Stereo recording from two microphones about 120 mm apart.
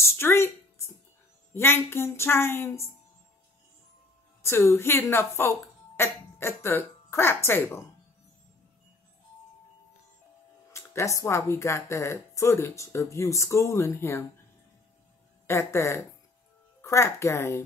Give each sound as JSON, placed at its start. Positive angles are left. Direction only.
{"t": 0.0, "sound": "a sound", "side_deg": 20}
{"t": 1.5, "sound": "speech", "side_deg": 20}
{"t": 4.4, "sound": "speech", "side_deg": 20}
{"t": 10.7, "sound": "speech", "side_deg": 20}
{"t": 15.4, "sound": "speech", "side_deg": 20}